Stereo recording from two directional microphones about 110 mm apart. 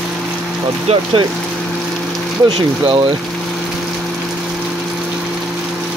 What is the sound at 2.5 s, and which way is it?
Speech, 45° right (ahead or behind).